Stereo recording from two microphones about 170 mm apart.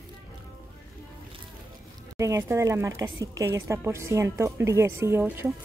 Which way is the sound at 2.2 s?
20° right (ahead or behind).